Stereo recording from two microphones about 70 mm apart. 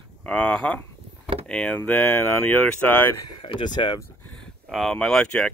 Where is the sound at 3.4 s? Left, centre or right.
Left.